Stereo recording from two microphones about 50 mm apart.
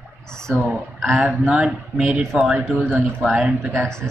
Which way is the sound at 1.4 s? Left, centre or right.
Centre.